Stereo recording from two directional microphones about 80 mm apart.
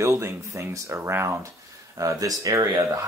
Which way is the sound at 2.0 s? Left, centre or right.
Right.